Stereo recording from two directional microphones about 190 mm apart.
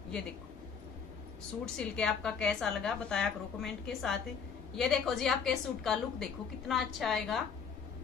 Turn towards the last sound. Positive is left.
turn(degrees=0)  # may be behind; listen again after turning